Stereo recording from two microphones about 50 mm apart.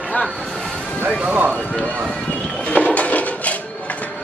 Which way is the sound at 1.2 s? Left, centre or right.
Right.